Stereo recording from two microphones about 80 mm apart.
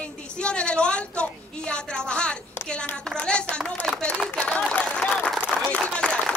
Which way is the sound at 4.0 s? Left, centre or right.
Centre.